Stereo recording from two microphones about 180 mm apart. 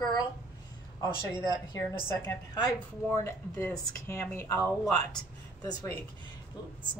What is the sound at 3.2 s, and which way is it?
Speech, 15° left (ahead or behind).